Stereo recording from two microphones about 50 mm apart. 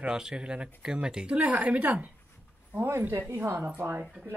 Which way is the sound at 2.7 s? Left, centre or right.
Right.